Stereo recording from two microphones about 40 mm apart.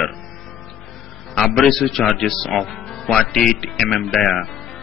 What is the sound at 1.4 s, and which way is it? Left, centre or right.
A man's voice, centre.